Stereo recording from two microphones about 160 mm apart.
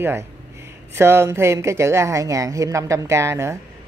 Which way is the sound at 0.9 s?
15° right (ahead or behind).